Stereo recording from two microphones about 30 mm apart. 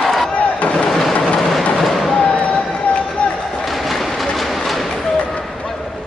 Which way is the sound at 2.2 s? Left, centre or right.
Left.